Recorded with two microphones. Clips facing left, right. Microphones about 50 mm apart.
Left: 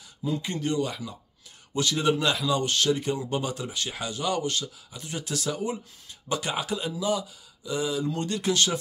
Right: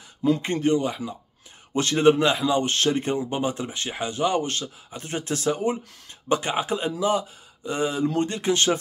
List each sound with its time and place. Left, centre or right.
0.4 s speech: right
1.7 s speech: right
3.3 s speech: right